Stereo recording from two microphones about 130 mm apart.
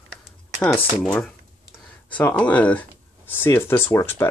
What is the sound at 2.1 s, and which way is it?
Speech, 10° left (ahead or behind).